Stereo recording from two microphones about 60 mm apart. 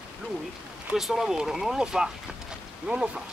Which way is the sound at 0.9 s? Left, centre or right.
Centre.